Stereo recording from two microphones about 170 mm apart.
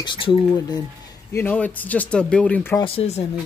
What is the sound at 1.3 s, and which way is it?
Speech, 10° left (ahead or behind).